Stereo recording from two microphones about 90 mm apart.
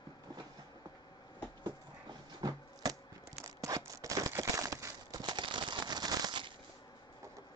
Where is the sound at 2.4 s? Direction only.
45° right (ahead or behind).